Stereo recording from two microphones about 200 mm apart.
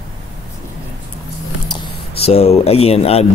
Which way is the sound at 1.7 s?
30° left (ahead or behind).